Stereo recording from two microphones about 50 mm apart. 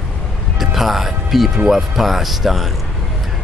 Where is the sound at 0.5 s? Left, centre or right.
Centre.